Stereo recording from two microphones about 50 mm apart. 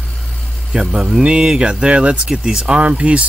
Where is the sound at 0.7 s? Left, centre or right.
Centre.